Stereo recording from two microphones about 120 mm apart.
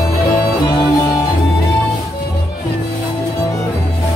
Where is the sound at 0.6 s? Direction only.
40° left (ahead or behind).